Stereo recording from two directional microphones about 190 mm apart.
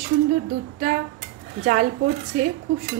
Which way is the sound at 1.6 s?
40° right (ahead or behind).